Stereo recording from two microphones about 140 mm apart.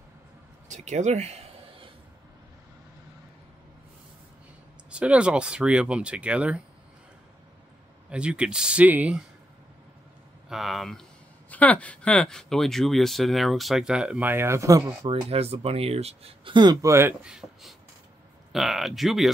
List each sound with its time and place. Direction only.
0.7 s speech: 55° right (ahead or behind)
4.9 s speech: 10° right (ahead or behind)
8.1 s speech: 10° right (ahead or behind)
10.5 s speech: centre (ahead or behind); by 14.9 s 20° right (ahead or behind)
15.0 s speech: 45° right (ahead or behind)
17.2 s speech: 5° right (ahead or behind)